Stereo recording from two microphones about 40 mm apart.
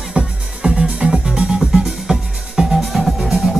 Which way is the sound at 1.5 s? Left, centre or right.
Centre.